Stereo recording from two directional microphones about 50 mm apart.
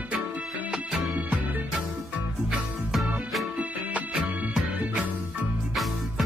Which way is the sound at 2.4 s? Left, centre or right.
Centre.